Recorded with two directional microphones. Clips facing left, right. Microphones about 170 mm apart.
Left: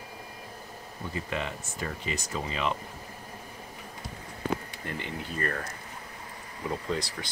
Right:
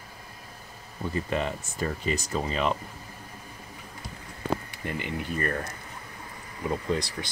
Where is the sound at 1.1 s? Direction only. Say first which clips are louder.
Right 5 dB; 40° right (ahead or behind).